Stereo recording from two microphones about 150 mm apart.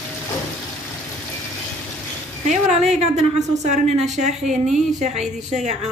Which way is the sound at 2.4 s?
50° right (ahead or behind).